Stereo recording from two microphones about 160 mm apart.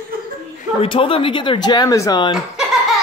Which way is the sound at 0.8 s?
35° left (ahead or behind).